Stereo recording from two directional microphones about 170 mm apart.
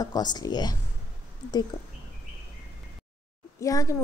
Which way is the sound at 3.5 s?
20° left (ahead or behind).